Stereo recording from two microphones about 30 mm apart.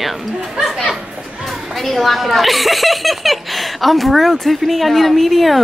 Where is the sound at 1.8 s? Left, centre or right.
Centre.